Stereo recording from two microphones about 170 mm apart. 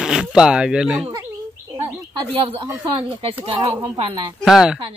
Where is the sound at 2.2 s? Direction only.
35° right (ahead or behind).